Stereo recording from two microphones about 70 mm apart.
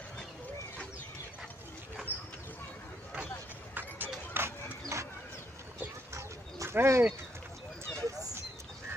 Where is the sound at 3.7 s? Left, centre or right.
Right.